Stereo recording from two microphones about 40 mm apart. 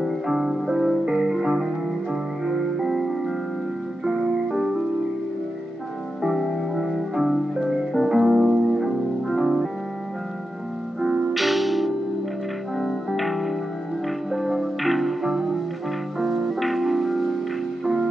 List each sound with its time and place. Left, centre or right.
0.0 s music: centre
6.2 s music: centre
8.7 s music: centre
11.3 s music: centre